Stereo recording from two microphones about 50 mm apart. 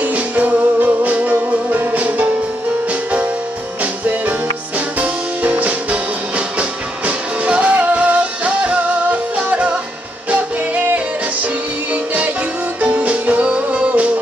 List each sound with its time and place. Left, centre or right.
0.0 s music: right
3.8 s music: right
10.3 s music: right
12.8 s music: right